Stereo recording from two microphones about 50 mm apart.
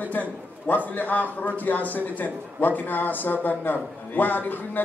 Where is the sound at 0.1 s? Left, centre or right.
Left.